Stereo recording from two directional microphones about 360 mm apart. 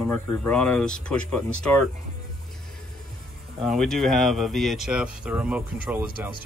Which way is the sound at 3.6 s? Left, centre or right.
Centre.